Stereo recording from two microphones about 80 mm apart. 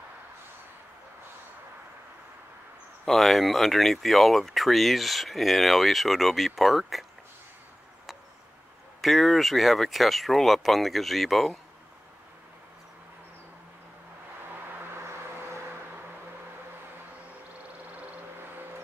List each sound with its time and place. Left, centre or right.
3.1 s speech: centre
9.0 s speech: centre
14.5 s vehicle: right
17.9 s a sound: right